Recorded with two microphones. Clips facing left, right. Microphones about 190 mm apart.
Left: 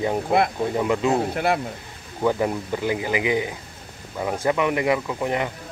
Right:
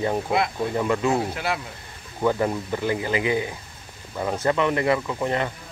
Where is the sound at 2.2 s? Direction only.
10° left (ahead or behind).